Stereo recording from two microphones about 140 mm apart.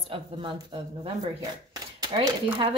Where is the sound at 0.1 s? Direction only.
35° right (ahead or behind).